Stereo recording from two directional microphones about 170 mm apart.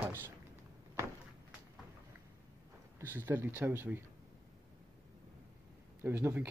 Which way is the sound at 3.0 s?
10° right (ahead or behind).